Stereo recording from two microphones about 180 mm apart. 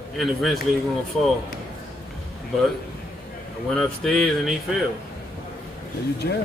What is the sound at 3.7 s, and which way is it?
Speech, 5° left (ahead or behind).